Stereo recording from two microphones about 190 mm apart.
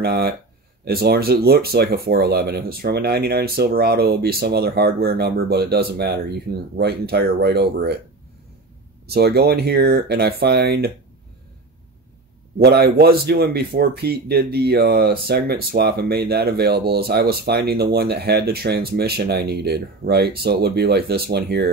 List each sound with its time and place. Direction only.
0.0 s speech: 55° right (ahead or behind)
9.0 s speech: 55° right (ahead or behind)
12.5 s speech: 55° right (ahead or behind)